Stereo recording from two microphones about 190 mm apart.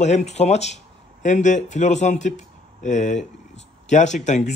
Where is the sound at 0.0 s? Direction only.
35° left (ahead or behind).